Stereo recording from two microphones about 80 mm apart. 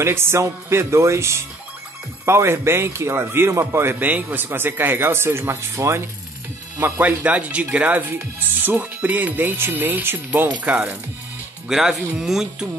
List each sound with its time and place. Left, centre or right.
0.0 s a man's voice: right
11.7 s speech: centre